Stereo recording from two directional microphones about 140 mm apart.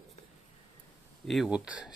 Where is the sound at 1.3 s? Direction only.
Centre (ahead or behind).